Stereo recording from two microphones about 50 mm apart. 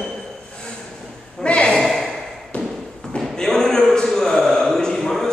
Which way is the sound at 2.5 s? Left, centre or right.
Left.